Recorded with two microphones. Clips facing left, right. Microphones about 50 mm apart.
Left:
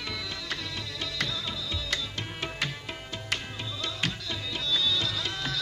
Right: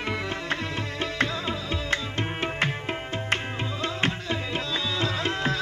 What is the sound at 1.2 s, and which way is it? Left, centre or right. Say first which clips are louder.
Music: right 6 dB; right.